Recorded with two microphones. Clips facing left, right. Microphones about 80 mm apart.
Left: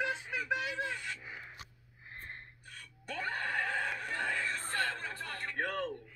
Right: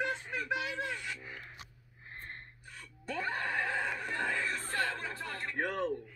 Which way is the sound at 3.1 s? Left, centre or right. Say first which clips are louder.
Right 1 dB; right.